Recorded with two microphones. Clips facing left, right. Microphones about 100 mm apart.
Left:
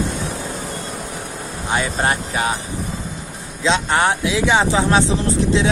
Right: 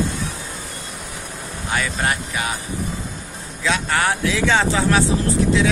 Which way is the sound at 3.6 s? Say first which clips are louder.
Left 3 dB; 25° left (ahead or behind).